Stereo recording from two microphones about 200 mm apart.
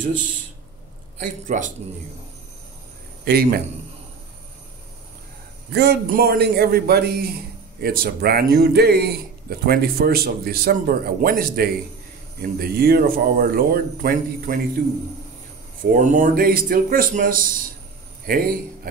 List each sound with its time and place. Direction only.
1.2 s a man's voice: 40° right (ahead or behind)
5.7 s speech: 55° right (ahead or behind)
15.8 s a man's voice: 40° right (ahead or behind)